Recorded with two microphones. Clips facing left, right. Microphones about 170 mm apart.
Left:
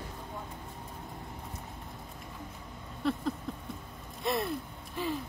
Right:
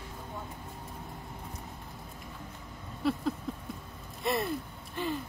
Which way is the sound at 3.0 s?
5° right (ahead or behind).